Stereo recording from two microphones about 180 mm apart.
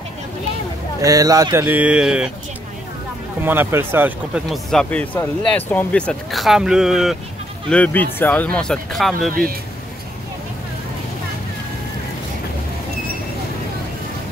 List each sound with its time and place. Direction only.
1.0 s speech: 20° right (ahead or behind)
3.4 s speech: 10° right (ahead or behind)
4.5 s speech: centre (ahead or behind)
7.7 s speech: 10° left (ahead or behind)
9.3 s speech: 55° right (ahead or behind)